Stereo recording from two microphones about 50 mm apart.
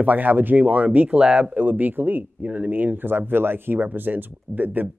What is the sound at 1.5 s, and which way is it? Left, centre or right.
Speech, right.